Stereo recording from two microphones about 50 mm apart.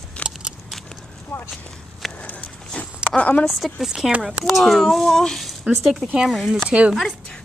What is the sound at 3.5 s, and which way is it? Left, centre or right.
A child's voice, centre.